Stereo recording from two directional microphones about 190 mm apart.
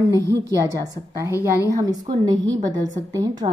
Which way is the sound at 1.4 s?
15° right (ahead or behind).